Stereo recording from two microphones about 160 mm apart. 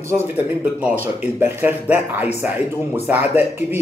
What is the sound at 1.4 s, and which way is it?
Speech, 10° right (ahead or behind).